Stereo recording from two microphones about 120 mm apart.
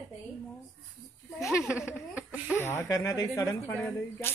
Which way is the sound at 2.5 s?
20° left (ahead or behind).